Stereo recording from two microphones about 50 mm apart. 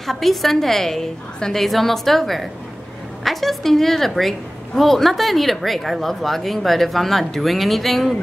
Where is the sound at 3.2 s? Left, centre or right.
Centre.